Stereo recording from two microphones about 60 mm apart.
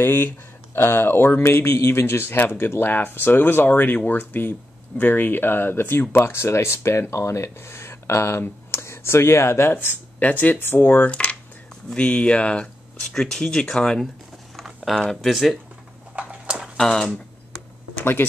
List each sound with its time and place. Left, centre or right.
0.0 s speech: left
11.1 s speech: centre
15.0 s speech: centre
16.2 s a sound: centre
16.7 s speech: centre
17.9 s a sound: left